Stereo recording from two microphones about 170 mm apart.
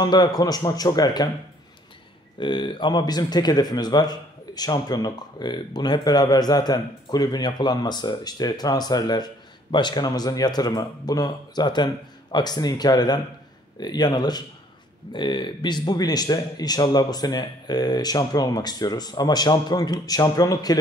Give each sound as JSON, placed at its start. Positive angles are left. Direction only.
{"t": 0.0, "sound": "speech", "side_deg": 25}
{"t": 2.3, "sound": "speech", "side_deg": 30}